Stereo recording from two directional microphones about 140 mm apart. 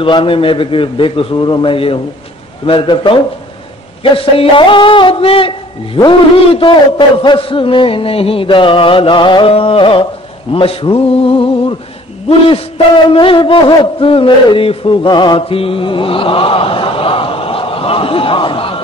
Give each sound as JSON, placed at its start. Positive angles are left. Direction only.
{"t": 0.0, "sound": "a man's voice", "side_deg": 40}